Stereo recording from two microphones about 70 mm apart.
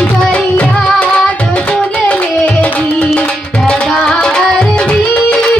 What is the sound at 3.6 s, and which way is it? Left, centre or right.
Tabla, centre.